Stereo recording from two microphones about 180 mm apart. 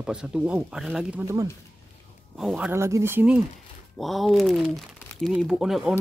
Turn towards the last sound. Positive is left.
turn(degrees=-5)  # may be behind; listen again after turning